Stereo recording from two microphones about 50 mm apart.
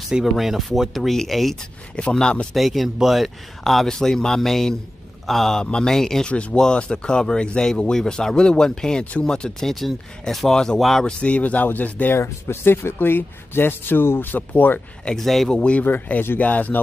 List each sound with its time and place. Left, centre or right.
0.2 s speech: centre
2.0 s speech: left
2.5 s a man's voice: centre
5.6 s speech: centre
6.2 s speech: left; by 10.5 s centre
10.5 s speech: centre
11.1 s speech: left
12.2 s speech: left
15.1 s speech: centre
15.5 s speech: left
15.8 s speech: left
16.3 s speech: left